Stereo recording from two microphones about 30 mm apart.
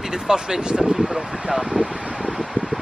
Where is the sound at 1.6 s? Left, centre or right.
Right.